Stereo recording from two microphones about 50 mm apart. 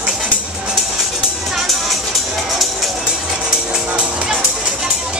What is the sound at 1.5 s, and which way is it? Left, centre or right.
Music, centre.